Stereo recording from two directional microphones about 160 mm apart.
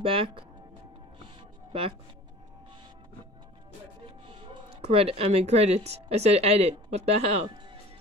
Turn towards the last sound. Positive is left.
turn(degrees=-40)  # may be behind; listen again after turning